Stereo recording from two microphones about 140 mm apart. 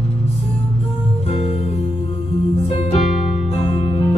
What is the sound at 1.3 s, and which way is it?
Music, 45° left (ahead or behind).